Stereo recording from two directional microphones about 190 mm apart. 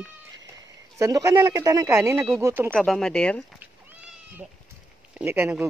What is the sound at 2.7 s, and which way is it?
Speech, centre (ahead or behind).